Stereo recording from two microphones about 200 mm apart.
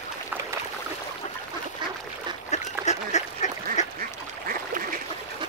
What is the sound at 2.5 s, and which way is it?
Duck, 35° left (ahead or behind).